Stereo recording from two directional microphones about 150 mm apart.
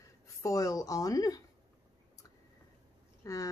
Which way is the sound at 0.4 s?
20° left (ahead or behind).